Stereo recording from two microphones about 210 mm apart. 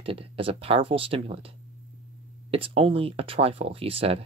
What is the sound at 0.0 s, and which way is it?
Speech, 25° right (ahead or behind).